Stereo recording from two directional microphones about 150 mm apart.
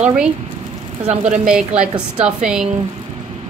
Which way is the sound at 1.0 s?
45° right (ahead or behind).